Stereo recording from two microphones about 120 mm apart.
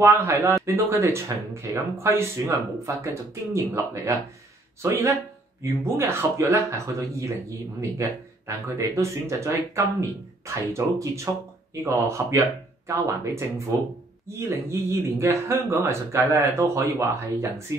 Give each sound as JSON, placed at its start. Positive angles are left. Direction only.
{"t": 0.0, "sound": "speech", "side_deg": -20}